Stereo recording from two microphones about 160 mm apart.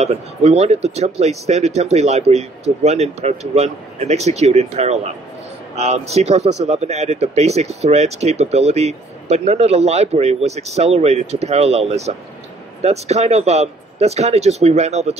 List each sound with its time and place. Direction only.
0.0 s speech: 40° right (ahead or behind)